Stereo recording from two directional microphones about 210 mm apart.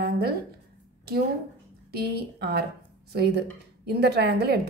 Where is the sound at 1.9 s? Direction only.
50° right (ahead or behind).